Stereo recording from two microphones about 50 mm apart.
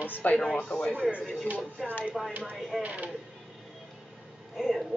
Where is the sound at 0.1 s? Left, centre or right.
Left.